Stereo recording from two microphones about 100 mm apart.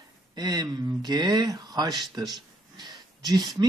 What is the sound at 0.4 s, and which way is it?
Speech, 40° right (ahead or behind).